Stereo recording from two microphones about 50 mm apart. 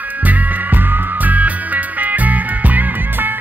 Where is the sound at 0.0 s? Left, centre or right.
Right.